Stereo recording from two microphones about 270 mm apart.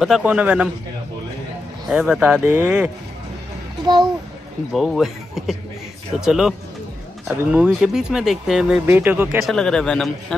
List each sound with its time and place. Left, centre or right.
0.0 s speech: centre
1.9 s speech: centre
3.8 s a child's voice: centre
4.7 s speech: centre